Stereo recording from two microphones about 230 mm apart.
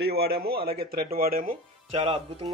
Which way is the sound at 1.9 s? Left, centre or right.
Right.